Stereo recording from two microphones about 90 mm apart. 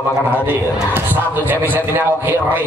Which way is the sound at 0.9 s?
20° right (ahead or behind).